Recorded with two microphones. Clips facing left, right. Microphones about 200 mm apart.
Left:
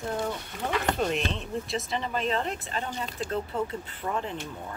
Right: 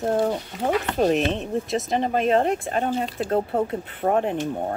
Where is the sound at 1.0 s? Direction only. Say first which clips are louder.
Right 8 dB; 45° right (ahead or behind).